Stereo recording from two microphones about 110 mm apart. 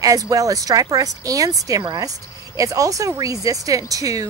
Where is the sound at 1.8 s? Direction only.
40° right (ahead or behind).